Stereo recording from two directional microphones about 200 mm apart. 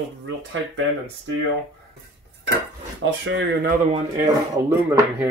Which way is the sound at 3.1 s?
60° right (ahead or behind).